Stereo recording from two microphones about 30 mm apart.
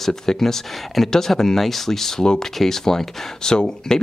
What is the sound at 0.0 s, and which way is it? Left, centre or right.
Speech, centre.